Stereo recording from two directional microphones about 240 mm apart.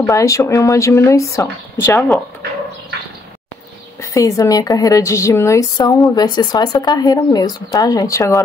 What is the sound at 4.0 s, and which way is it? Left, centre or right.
A woman's voice, centre.